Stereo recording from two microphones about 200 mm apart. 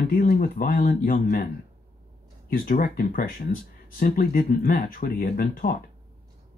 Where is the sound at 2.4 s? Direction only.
45° left (ahead or behind).